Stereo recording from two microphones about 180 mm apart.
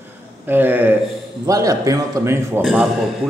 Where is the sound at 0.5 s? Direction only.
10° right (ahead or behind).